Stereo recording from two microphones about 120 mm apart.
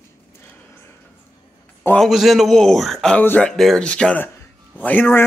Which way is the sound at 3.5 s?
5° left (ahead or behind).